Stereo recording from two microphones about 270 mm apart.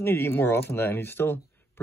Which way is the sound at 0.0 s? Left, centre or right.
Centre.